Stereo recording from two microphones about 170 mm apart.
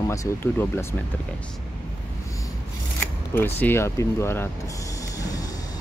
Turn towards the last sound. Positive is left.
turn(degrees=20)  # may be behind; listen again after turning